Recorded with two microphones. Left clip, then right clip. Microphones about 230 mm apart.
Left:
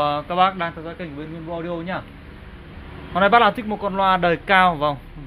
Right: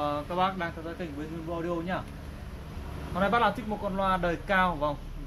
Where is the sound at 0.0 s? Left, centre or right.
Left.